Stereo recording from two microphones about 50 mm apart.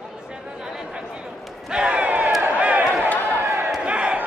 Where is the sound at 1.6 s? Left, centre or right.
Centre.